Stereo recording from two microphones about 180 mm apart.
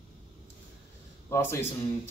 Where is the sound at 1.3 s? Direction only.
15° left (ahead or behind).